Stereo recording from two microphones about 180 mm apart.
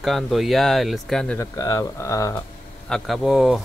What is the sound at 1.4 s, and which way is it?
Speech, 20° left (ahead or behind).